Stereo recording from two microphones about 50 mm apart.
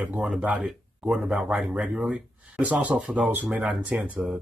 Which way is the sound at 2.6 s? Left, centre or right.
Right.